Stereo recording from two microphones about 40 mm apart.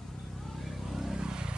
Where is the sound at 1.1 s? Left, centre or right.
Right.